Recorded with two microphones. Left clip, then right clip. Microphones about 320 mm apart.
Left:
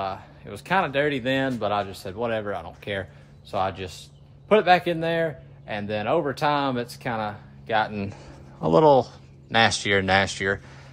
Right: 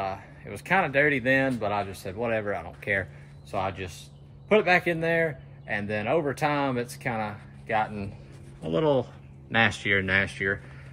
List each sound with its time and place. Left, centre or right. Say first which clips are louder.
0.0 s speech: left 2 dB; centre
8.5 s speech: left 9 dB; left
8.8 s speech: left 5 dB; centre